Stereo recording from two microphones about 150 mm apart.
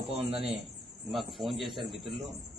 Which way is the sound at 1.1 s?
Centre (ahead or behind).